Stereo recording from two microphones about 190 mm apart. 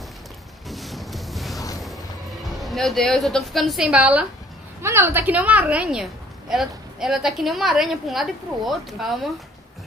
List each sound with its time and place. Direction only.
0.7 s boat: centre (ahead or behind)
2.5 s a woman's voice: centre (ahead or behind)